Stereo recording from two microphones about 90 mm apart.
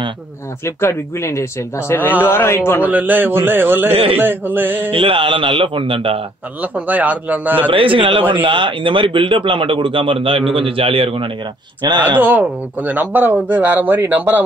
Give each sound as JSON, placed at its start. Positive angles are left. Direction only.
{"t": 0.7, "sound": "speech", "side_deg": 30}
{"t": 2.8, "sound": "speech", "side_deg": -20}
{"t": 3.9, "sound": "speech", "side_deg": -90}
{"t": 4.2, "sound": "speech", "side_deg": -25}
{"t": 4.9, "sound": "speech", "side_deg": -70}
{"t": 6.6, "sound": "a man's voice", "side_deg": -20}
{"t": 7.7, "sound": "speech", "side_deg": -75}
{"t": 11.8, "sound": "speech", "side_deg": -50}
{"t": 12.2, "sound": "speech", "side_deg": -20}